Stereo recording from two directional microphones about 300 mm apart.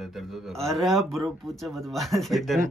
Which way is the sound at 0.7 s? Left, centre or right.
Centre.